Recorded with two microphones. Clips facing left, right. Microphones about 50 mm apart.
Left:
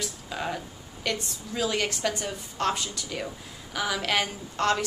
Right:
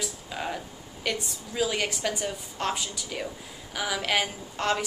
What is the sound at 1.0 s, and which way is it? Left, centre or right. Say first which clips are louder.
A woman's voice: even; centre.